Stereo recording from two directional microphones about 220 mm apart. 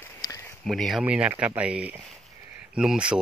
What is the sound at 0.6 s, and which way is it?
Speech, centre (ahead or behind).